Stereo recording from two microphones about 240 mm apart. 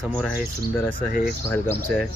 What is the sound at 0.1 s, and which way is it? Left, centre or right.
Speech, centre.